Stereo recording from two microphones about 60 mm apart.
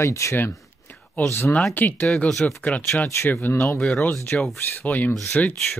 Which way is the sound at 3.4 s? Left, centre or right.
Left.